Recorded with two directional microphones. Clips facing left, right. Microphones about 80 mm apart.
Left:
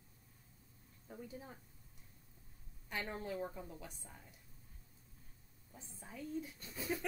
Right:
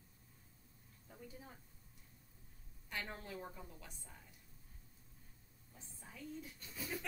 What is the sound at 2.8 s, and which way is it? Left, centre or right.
A woman's voice, centre.